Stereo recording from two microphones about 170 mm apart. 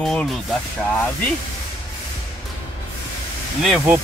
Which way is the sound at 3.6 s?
5° right (ahead or behind).